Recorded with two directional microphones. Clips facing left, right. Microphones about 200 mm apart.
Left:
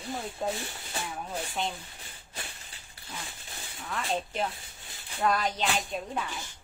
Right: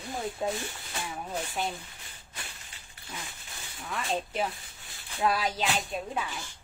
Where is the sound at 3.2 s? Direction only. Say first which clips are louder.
Left 1 dB; 30° left (ahead or behind).